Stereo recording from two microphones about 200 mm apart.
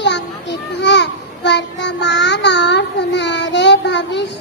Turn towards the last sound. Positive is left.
turn(degrees=60)  # may be behind; listen again after turning